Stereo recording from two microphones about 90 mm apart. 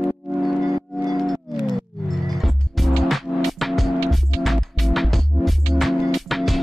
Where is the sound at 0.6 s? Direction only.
40° right (ahead or behind).